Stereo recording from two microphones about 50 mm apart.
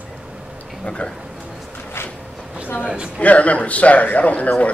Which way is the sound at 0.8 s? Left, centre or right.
Left.